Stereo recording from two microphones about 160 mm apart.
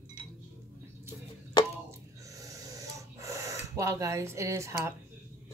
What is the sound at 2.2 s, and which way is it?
Snoring, 20° right (ahead or behind).